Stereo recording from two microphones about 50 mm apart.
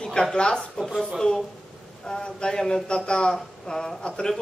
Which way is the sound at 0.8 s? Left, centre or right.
Centre.